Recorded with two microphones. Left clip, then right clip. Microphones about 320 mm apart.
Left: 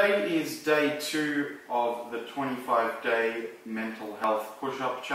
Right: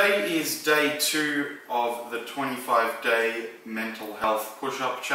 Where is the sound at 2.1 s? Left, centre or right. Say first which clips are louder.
Right 3 dB; centre.